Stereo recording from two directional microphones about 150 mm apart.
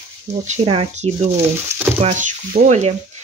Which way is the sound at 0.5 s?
45° right (ahead or behind).